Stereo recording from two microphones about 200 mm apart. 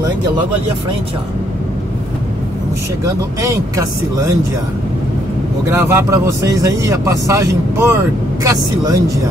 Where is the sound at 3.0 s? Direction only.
15° right (ahead or behind).